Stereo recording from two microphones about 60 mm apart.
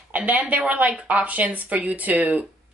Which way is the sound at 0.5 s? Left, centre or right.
Right.